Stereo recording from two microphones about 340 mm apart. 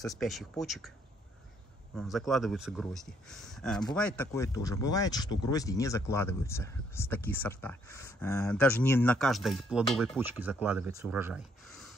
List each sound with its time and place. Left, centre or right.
0.0 s speech: centre
2.0 s speech: centre